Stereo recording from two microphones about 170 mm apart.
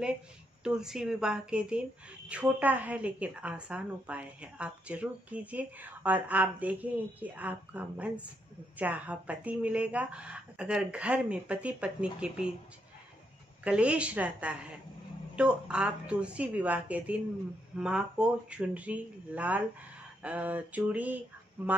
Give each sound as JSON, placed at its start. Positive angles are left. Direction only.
{"t": 0.7, "sound": "a woman's voice", "side_deg": -5}
{"t": 13.7, "sound": "a woman's voice", "side_deg": -5}